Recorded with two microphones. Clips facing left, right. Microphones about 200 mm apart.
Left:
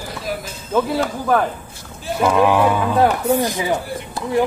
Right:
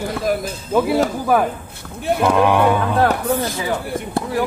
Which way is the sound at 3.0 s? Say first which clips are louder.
Left 2 dB; 15° left (ahead or behind).